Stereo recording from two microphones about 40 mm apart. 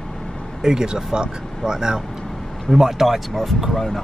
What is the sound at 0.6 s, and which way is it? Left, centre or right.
Speech, centre.